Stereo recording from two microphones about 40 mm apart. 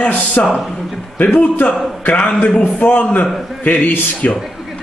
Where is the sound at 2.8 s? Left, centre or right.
Left.